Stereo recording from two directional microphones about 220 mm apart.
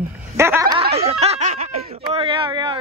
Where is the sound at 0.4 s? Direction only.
10° right (ahead or behind).